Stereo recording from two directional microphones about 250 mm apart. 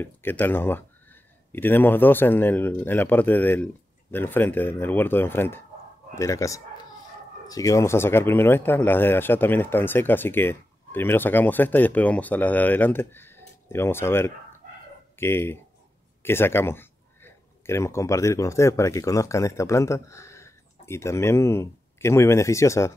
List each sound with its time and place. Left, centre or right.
0.0 s speech: centre